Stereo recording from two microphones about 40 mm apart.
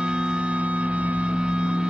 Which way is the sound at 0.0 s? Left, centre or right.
Right.